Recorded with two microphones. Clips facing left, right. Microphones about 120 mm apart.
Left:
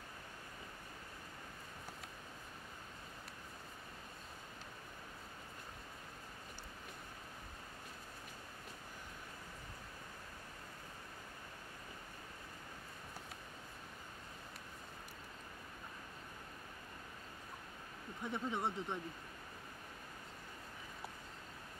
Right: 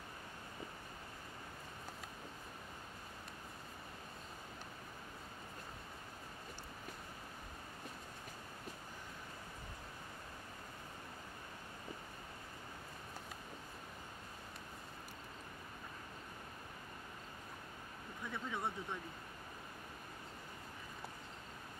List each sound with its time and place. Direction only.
18.2 s speech: 20° left (ahead or behind)